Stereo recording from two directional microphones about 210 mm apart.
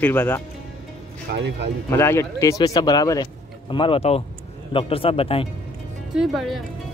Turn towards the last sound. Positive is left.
turn(degrees=0)  # may be behind; listen again after turning